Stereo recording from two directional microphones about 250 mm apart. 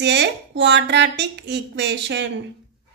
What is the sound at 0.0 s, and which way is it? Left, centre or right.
Speech, right.